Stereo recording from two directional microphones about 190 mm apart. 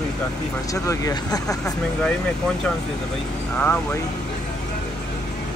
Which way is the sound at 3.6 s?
10° left (ahead or behind).